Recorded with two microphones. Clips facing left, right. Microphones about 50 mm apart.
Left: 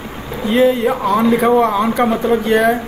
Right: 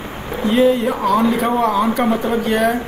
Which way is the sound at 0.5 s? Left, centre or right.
Centre.